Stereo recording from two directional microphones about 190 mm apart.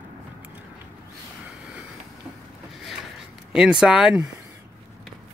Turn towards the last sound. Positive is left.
turn(degrees=-5)  # may be behind; listen again after turning